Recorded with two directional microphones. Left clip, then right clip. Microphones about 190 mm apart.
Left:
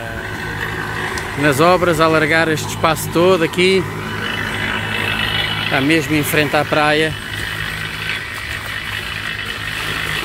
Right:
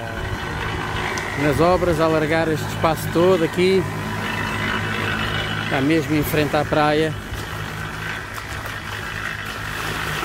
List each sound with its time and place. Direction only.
1.4 s speech: 5° left (ahead or behind)
4.6 s a sound: 70° right (ahead or behind)
5.7 s speech: centre (ahead or behind)